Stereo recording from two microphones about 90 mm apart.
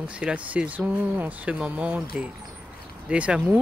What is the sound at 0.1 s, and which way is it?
Speech, 10° right (ahead or behind).